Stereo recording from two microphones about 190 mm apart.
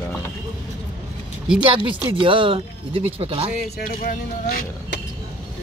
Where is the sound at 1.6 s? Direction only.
25° right (ahead or behind).